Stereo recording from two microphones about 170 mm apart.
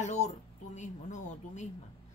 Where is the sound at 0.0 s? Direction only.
45° left (ahead or behind).